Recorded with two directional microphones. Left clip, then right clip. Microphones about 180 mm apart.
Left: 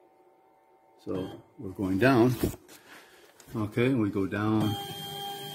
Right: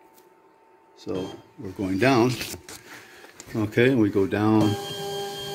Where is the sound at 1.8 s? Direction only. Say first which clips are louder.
Right 3 dB; 35° left (ahead or behind).